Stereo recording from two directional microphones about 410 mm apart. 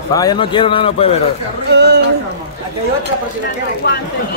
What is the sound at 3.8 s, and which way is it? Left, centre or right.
Speech, left.